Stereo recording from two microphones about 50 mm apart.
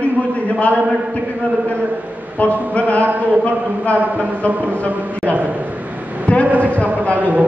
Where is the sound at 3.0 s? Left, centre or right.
Right.